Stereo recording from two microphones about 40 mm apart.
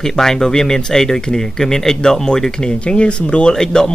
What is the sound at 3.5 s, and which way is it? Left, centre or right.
Speech, centre.